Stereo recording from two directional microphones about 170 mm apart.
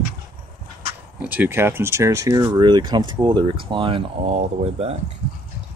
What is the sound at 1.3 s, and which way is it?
Speech, 10° right (ahead or behind).